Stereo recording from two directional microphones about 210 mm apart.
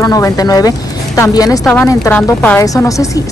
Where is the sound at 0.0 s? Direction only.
15° left (ahead or behind).